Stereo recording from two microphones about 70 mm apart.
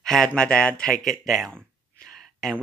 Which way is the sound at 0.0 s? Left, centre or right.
Centre.